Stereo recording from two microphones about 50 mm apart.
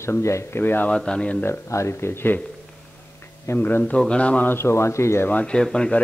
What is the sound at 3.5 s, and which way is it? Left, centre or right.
Speech, left.